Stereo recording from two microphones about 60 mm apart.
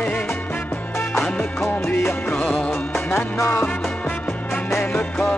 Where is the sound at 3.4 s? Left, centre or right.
Left.